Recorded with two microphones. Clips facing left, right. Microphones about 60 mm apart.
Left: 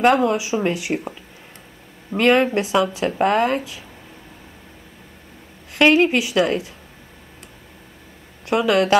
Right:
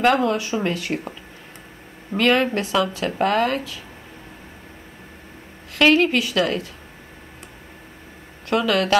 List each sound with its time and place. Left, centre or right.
0.0 s speech: left
2.1 s speech: centre
5.8 s speech: centre
8.5 s speech: centre